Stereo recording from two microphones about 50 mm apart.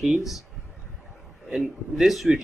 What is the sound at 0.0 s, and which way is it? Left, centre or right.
Speech, centre.